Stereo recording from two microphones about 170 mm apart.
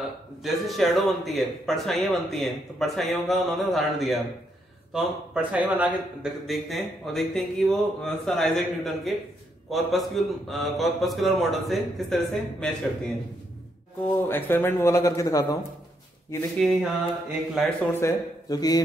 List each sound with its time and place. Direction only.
0.4 s speech: centre (ahead or behind)
14.0 s speech: 10° left (ahead or behind)
16.5 s speech: 5° right (ahead or behind)
17.9 s speech: 20° left (ahead or behind)